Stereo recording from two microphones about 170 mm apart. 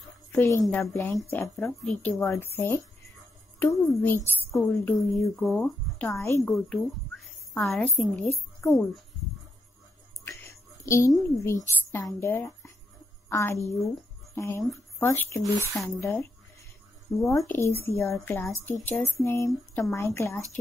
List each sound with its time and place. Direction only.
0.3 s a woman's voice: 15° left (ahead or behind)
1.4 s a woman's voice: centre (ahead or behind); by 5.2 s 15° left (ahead or behind)
5.3 s a woman's voice: centre (ahead or behind)
7.5 s a woman's voice: 5° left (ahead or behind)
10.9 s a woman's voice: 15° left (ahead or behind)
17.3 s a woman's voice: 15° left (ahead or behind)